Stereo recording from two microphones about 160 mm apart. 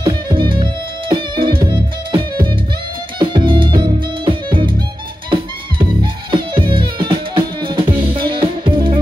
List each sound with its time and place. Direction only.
0.0 s music: 35° right (ahead or behind)